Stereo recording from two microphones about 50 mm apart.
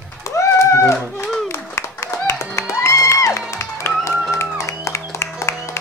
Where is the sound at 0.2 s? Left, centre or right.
Left.